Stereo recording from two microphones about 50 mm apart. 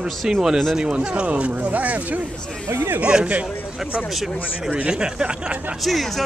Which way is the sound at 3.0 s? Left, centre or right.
Centre.